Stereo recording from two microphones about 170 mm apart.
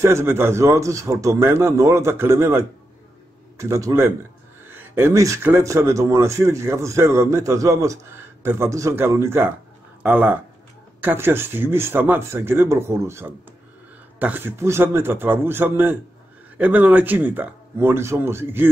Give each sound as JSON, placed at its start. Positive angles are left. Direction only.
{"t": 0.0, "sound": "speech", "side_deg": -15}